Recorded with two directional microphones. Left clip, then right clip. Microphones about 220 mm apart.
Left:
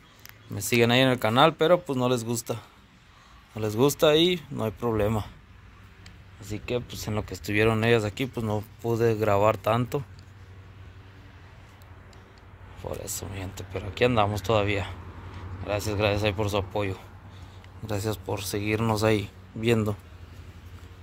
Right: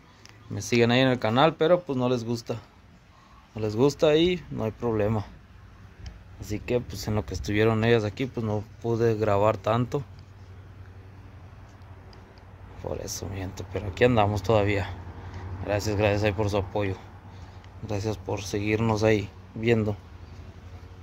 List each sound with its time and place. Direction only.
0.6 s speech: 5° right (ahead or behind)
6.4 s speech: 20° right (ahead or behind)
12.8 s speech: 15° right (ahead or behind); by 20.0 s centre (ahead or behind)